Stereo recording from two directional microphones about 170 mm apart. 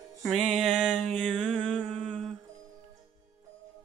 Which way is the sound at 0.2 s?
Centre (ahead or behind).